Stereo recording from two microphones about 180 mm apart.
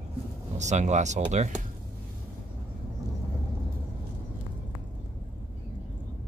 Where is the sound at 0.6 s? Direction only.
40° right (ahead or behind).